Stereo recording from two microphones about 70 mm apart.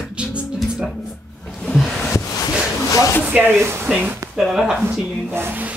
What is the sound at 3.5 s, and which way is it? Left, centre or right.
Speech, right.